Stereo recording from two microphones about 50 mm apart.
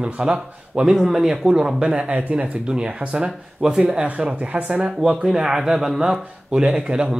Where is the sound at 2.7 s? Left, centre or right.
Centre.